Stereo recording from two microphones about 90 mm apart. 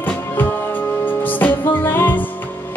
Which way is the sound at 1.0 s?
20° left (ahead or behind).